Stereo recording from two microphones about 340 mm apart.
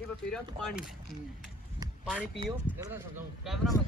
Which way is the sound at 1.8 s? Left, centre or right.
Centre.